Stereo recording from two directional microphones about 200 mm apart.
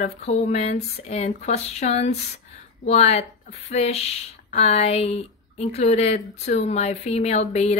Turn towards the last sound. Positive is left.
turn(degrees=35)  # may be behind; listen again after turning